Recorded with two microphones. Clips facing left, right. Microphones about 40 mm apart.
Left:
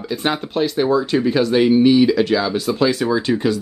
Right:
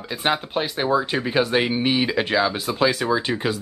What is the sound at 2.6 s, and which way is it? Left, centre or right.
Speech, centre.